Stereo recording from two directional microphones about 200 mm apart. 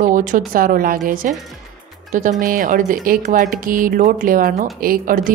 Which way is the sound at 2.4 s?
45° right (ahead or behind).